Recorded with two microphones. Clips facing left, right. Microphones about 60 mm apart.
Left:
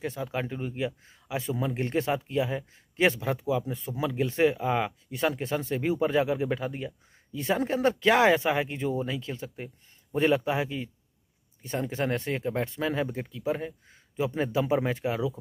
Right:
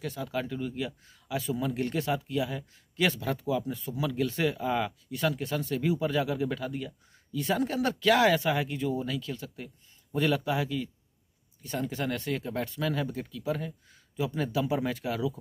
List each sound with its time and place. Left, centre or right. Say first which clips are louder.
0.0 s speech: left 1 dB; left